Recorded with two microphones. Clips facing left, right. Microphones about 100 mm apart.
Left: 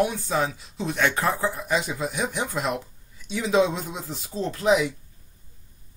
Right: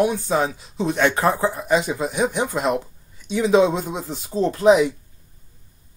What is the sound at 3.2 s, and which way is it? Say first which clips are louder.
Speech: right 5 dB; centre (ahead or behind).